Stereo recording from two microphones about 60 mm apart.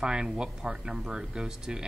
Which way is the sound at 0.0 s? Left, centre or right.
Centre.